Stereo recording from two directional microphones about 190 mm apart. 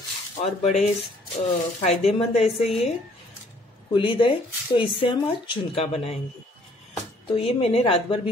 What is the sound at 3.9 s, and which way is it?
Speech, 25° left (ahead or behind).